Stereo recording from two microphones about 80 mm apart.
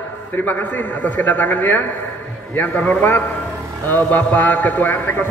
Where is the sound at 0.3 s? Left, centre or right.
Left.